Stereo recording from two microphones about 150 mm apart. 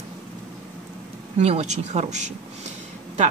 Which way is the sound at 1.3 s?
45° right (ahead or behind).